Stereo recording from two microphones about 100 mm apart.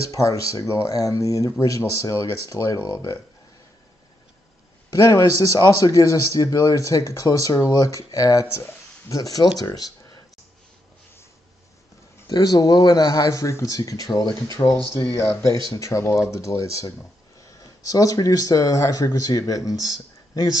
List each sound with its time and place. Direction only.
0.0 s speech: 35° left (ahead or behind)
5.0 s speech: 35° left (ahead or behind)
12.3 s speech: 45° left (ahead or behind)